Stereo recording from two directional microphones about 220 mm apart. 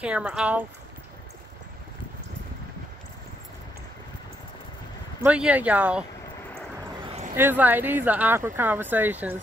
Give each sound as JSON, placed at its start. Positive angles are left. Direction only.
{"t": 0.0, "sound": "speech", "side_deg": -5}
{"t": 5.2, "sound": "speech", "side_deg": -5}
{"t": 7.3, "sound": "speech", "side_deg": -10}